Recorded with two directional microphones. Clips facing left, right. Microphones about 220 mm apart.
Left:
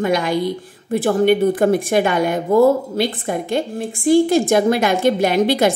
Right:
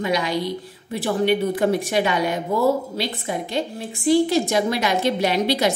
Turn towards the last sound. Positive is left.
turn(degrees=50)  # may be behind; listen again after turning